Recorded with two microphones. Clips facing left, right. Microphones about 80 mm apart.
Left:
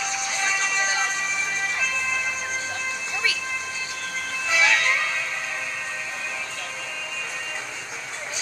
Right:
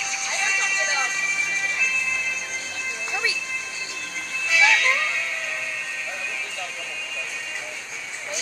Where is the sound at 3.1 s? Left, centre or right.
Right.